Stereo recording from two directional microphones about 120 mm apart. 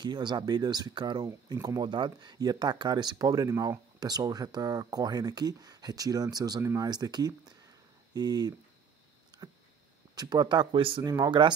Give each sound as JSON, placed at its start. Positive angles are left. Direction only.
{"t": 0.0, "sound": "speech", "side_deg": -40}
{"t": 9.4, "sound": "a sound", "side_deg": -35}
{"t": 10.1, "sound": "speech", "side_deg": -35}
{"t": 11.0, "sound": "speech", "side_deg": -30}